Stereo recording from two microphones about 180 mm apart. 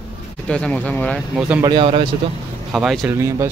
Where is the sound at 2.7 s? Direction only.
Centre (ahead or behind).